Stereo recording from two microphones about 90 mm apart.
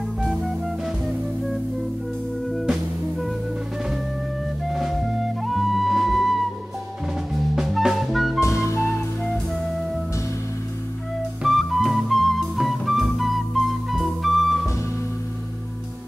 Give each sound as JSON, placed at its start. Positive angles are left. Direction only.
{"t": 2.5, "sound": "music", "side_deg": 0}
{"t": 4.6, "sound": "music", "side_deg": 0}
{"t": 7.5, "sound": "music", "side_deg": -5}
{"t": 8.4, "sound": "music", "side_deg": 30}
{"t": 11.4, "sound": "music", "side_deg": 0}